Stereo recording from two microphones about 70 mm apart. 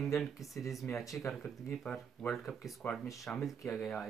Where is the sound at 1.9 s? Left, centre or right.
Centre.